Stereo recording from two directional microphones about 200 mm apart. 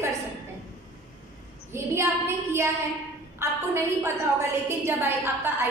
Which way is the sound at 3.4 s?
15° right (ahead or behind).